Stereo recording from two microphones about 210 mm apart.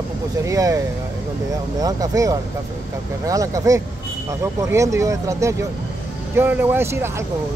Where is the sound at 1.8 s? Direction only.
15° right (ahead or behind).